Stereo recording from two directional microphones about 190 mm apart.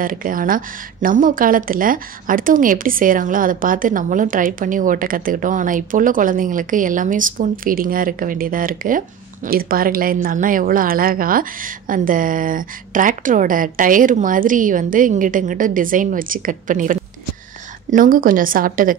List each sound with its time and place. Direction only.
0.0 s a woman's voice: 45° right (ahead or behind)